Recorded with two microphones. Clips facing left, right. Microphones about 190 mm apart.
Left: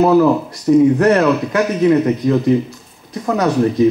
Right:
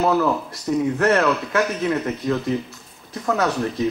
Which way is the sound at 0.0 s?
20° left (ahead or behind).